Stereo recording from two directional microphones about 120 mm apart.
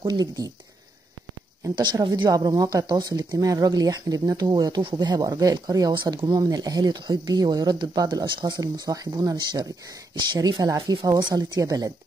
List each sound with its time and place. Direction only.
0.0 s speech: 30° right (ahead or behind)
1.8 s speech: 35° right (ahead or behind)